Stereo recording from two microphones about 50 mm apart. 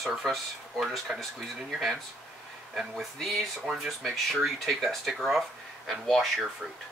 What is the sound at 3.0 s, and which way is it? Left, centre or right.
Speech, centre.